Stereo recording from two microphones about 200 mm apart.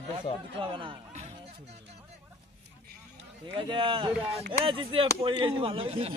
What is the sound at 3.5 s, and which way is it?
Speech, 25° right (ahead or behind).